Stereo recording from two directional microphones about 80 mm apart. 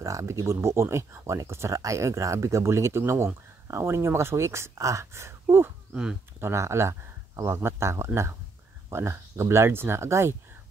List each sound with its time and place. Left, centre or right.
0.0 s speech: right